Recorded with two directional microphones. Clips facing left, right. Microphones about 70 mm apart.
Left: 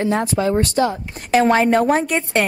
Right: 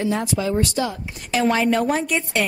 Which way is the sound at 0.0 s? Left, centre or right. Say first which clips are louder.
Left 4 dB; left.